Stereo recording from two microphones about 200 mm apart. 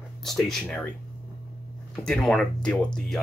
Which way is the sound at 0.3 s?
Centre (ahead or behind).